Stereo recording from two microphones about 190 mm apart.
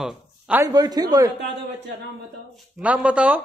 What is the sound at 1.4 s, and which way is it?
Speech, 65° right (ahead or behind).